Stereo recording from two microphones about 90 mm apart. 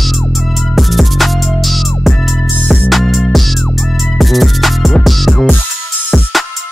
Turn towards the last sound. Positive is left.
turn(degrees=0)  # may be behind; listen again after turning